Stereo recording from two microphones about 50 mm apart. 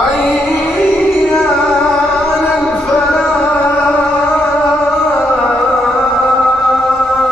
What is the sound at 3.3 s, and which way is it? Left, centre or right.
Music, left.